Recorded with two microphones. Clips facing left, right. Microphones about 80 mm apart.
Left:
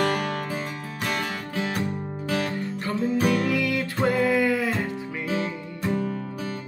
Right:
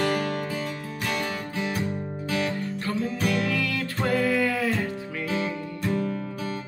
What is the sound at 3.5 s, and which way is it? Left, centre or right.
Music, centre.